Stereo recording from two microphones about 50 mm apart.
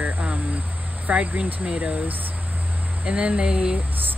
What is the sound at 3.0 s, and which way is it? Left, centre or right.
Speech, right.